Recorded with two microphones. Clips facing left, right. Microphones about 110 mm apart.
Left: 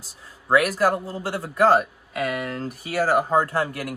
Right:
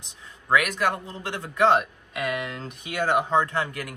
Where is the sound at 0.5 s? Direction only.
35° left (ahead or behind).